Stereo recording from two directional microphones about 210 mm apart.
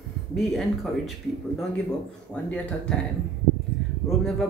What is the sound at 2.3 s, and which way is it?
Speech, 5° left (ahead or behind).